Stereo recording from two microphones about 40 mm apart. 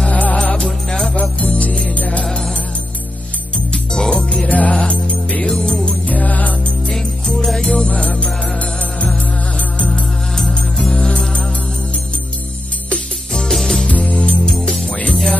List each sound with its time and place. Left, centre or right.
0.1 s music: left
0.8 s music: centre
1.5 s music: left
3.5 s music: centre
4.5 s music: left
5.5 s music: centre
6.0 s music: left
6.9 s music: centre
7.6 s music: left
9.8 s music: centre
13.3 s music: centre
13.8 s music: left